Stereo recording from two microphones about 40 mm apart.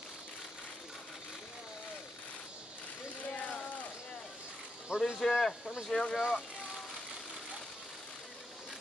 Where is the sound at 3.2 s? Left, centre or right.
Left.